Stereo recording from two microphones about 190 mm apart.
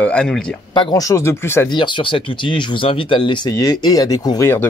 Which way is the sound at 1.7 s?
25° left (ahead or behind).